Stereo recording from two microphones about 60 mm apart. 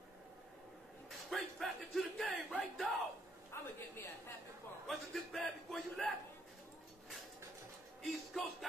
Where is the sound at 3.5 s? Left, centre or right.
Left.